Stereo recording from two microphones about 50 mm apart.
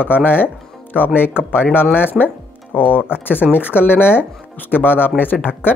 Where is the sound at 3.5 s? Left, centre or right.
Left.